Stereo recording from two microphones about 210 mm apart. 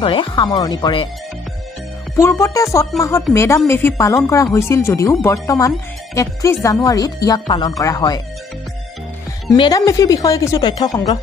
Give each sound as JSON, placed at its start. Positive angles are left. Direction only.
{"t": 0.0, "sound": "speech", "side_deg": 25}
{"t": 2.1, "sound": "speech", "side_deg": 15}
{"t": 9.5, "sound": "speech", "side_deg": 15}